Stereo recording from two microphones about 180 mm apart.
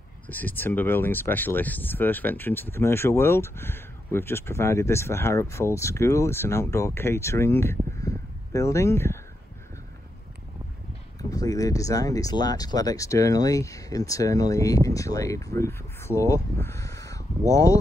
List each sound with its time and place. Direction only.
0.3 s speech: 10° left (ahead or behind)
11.1 s speech: 20° left (ahead or behind)
16.5 s crow: 15° left (ahead or behind)